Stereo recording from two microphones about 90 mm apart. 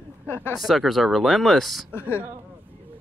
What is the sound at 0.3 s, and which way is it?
Speech, 25° left (ahead or behind).